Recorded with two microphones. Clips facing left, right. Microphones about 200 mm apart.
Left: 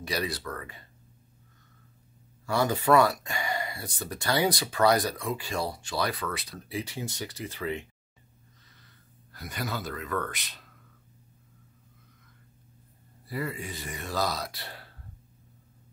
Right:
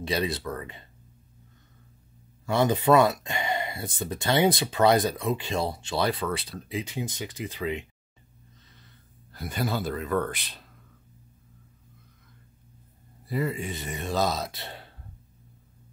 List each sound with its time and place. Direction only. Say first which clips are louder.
0.0 s speech: right 4 dB; 25° right (ahead or behind)
2.4 s speech: right 3 dB; 20° right (ahead or behind)
9.3 s speech: right 5 dB; 25° right (ahead or behind)
13.3 s speech: right 5 dB; 20° right (ahead or behind)